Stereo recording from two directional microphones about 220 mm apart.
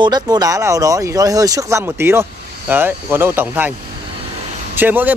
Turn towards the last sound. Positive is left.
turn(degrees=-10)  # may be behind; listen again after turning